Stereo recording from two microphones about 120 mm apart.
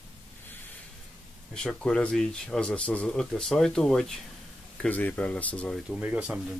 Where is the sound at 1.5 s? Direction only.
5° left (ahead or behind).